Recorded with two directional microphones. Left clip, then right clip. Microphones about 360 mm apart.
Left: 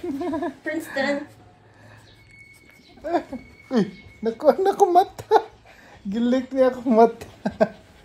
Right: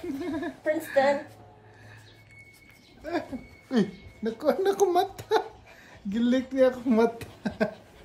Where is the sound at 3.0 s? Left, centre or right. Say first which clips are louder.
Left 7 dB; centre.